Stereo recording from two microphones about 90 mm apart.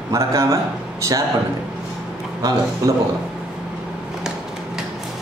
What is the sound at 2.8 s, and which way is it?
Speech, 40° right (ahead or behind).